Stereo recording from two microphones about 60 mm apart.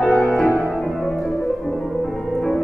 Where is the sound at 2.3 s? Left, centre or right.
Centre.